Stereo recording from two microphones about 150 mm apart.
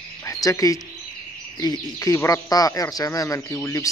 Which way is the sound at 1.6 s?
25° left (ahead or behind).